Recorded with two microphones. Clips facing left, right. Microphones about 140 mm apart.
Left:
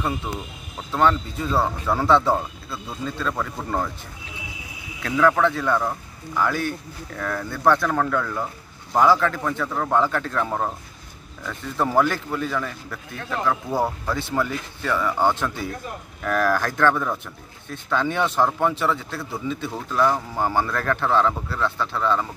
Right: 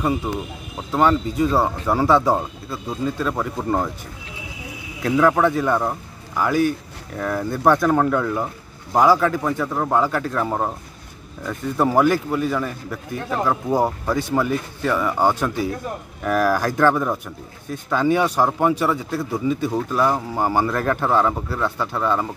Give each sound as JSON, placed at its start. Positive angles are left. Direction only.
{"t": 0.3, "sound": "a man's voice", "side_deg": -10}
{"t": 5.0, "sound": "a man's voice", "side_deg": -20}